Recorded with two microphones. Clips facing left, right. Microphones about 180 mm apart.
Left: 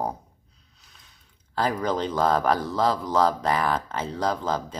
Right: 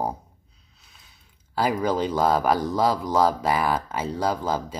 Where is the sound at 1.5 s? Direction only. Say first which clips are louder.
Right 2 dB; 10° right (ahead or behind).